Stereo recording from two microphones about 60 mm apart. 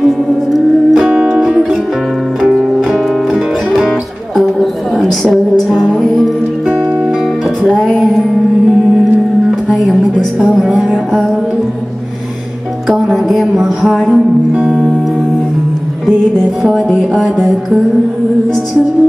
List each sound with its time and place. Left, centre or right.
0.0 s music: centre
1.1 s music: right
1.4 s music: centre
4.4 s a sound: centre
5.2 s music: centre
7.8 s music: centre
9.7 s speech: centre
12.8 s music: centre
14.6 s music: centre
16.6 s music: centre